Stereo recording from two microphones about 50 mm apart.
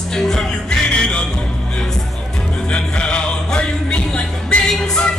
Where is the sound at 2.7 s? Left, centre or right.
Centre.